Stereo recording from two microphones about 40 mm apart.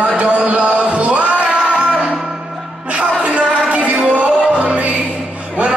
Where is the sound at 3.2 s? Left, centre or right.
Right.